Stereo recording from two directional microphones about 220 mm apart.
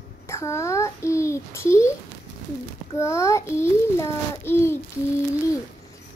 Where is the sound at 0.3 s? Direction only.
10° left (ahead or behind).